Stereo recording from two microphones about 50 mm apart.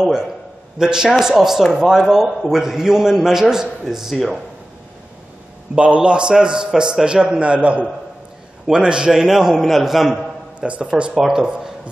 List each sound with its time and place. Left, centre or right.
0.0 s a man's voice: centre
5.8 s a man's voice: right; by 10.1 s centre
10.6 s a man's voice: right